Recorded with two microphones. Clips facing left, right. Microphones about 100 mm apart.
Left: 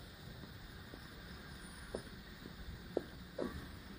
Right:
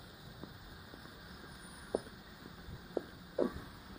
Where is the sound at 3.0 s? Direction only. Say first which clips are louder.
Right 1 dB; 50° right (ahead or behind).